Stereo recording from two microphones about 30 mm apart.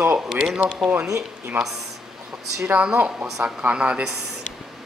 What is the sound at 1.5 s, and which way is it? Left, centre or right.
Speech, right.